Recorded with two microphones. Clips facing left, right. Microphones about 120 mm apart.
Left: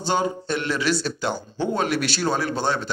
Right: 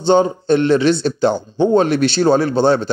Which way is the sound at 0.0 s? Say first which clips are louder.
Right 10 dB; 30° right (ahead or behind).